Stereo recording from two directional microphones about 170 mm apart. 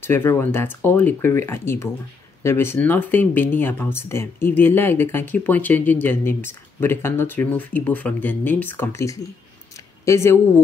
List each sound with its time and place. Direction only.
0.0 s speech: 15° left (ahead or behind)